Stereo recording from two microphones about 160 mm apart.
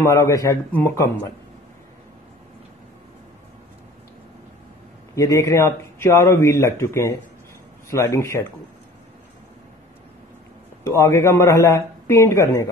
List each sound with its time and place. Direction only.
0.0 s speech: 20° left (ahead or behind)
5.1 s speech: 20° left (ahead or behind)
10.8 s speech: 15° left (ahead or behind)